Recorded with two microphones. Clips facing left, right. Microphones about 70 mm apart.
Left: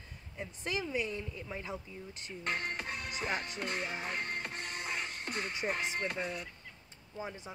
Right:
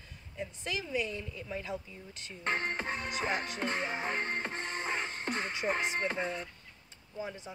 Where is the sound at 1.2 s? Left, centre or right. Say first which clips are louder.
Right 2 dB; centre.